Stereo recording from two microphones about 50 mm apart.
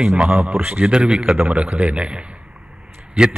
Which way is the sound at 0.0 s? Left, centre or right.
Centre.